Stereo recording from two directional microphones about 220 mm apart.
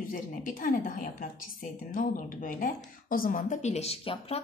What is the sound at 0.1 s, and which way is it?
Speech, 40° left (ahead or behind).